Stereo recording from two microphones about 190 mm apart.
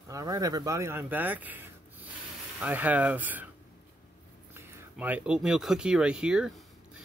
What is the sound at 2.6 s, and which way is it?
Speech, 10° right (ahead or behind).